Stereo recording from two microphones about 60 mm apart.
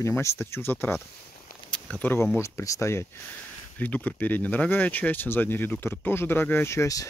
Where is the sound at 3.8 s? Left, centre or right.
Left.